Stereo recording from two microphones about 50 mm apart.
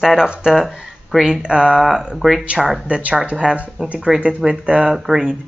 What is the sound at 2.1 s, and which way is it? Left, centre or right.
Speech, centre.